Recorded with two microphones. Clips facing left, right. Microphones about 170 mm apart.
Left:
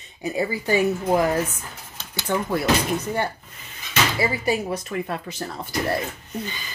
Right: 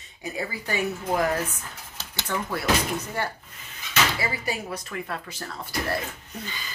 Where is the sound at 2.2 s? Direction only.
20° left (ahead or behind).